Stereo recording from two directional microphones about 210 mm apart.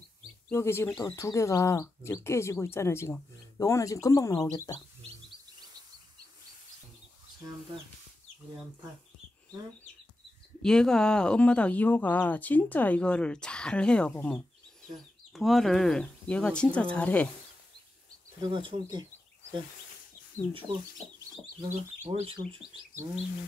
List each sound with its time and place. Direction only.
0.5 s speech: 10° left (ahead or behind)
10.6 s speech: 5° left (ahead or behind)
18.4 s speech: 25° right (ahead or behind)
21.2 s speech: 15° right (ahead or behind)
21.7 s speech: 30° right (ahead or behind)